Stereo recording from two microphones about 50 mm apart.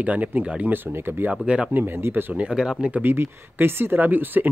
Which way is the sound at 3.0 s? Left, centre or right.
Right.